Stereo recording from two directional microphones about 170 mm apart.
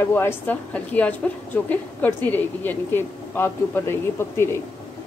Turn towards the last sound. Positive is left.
turn(degrees=15)  # may be behind; listen again after turning